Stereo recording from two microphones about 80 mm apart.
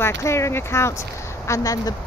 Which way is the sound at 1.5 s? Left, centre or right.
Left.